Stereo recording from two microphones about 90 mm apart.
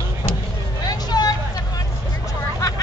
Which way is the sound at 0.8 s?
45° left (ahead or behind).